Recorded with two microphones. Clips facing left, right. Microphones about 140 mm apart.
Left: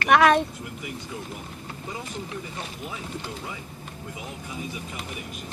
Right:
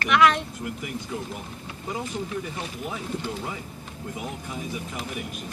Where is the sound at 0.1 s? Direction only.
50° left (ahead or behind).